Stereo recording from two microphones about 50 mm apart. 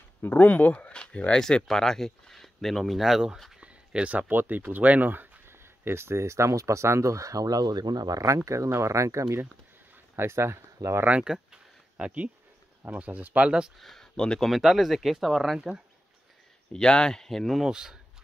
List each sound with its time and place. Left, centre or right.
0.2 s speech: left
1.4 s speech: centre
3.0 s speech: centre
3.5 s speech: right
5.5 s speech: right
8.5 s speech: right
10.1 s speech: right
11.2 s a sound: centre
12.9 s speech: right
13.7 s speech: centre
14.5 s speech: centre
16.7 s speech: centre
17.6 s speech: centre